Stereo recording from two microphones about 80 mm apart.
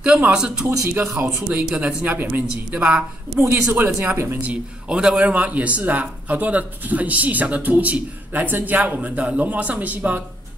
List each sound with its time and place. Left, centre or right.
0.0 s speech: centre
3.3 s speech: right
4.5 s speech: centre